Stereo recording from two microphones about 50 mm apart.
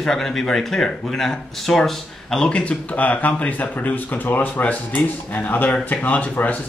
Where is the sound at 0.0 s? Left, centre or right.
Centre.